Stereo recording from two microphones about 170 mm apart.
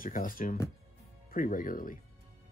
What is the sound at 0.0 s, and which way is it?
Speech, 55° left (ahead or behind).